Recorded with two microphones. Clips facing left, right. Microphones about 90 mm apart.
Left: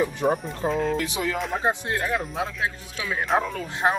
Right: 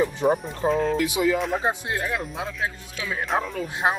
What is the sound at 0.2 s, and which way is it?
Speech, centre (ahead or behind).